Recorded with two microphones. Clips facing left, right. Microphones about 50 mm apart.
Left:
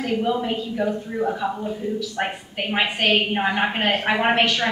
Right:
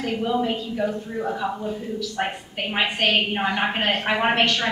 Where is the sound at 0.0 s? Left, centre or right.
Centre.